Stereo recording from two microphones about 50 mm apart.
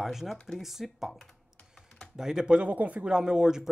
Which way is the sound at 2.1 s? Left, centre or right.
Centre.